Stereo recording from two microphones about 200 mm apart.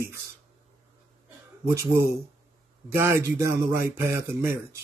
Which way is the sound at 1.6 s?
15° right (ahead or behind).